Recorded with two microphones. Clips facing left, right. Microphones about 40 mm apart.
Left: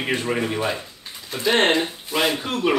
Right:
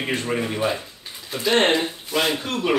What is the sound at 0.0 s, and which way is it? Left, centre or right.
Speech, centre.